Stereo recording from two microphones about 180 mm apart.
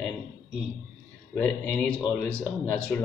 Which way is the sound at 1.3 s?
10° left (ahead or behind).